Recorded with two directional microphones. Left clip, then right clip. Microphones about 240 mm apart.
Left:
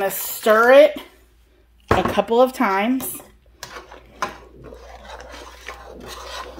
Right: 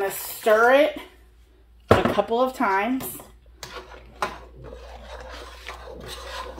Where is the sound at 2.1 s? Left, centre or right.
Left.